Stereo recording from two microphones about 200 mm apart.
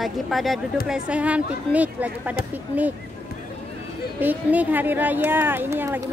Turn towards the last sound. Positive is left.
turn(degrees=-10)  # may be behind; listen again after turning